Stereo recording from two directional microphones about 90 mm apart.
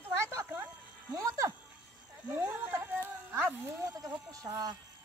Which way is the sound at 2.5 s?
20° right (ahead or behind).